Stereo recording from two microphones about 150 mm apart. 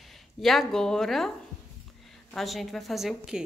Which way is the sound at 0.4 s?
Centre (ahead or behind).